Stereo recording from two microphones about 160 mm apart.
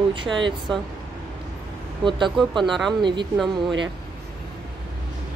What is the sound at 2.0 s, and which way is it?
Speech, 30° right (ahead or behind).